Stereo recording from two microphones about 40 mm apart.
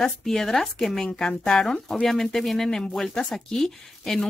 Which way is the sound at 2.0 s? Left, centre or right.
Centre.